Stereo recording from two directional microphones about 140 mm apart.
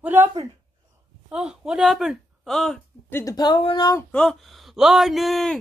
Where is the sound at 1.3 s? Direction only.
5° right (ahead or behind).